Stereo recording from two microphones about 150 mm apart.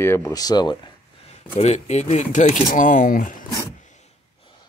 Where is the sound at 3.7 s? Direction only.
55° left (ahead or behind).